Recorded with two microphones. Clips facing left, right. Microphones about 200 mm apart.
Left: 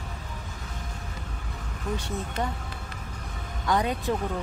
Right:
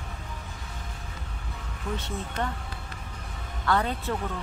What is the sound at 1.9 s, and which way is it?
Speech, 10° left (ahead or behind).